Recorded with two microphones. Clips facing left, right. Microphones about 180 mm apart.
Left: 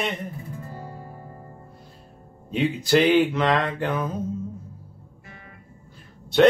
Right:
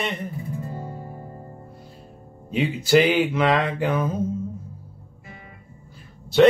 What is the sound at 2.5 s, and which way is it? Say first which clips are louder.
Music: right 1 dB; 5° right (ahead or behind).